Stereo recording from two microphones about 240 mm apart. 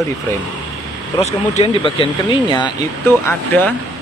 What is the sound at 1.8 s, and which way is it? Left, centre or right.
A man's voice, left.